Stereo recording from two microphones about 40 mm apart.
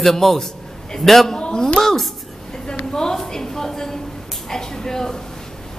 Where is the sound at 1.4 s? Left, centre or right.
Left.